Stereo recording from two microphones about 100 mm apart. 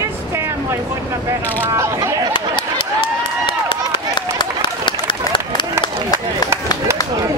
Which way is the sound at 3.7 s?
55° left (ahead or behind).